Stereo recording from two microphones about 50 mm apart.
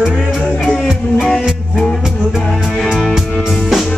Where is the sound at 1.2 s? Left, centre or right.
Centre.